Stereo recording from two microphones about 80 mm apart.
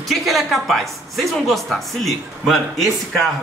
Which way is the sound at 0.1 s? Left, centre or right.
Centre.